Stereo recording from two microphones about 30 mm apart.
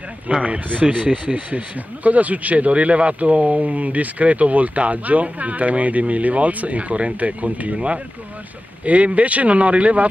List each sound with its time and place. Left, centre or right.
0.3 s speech: right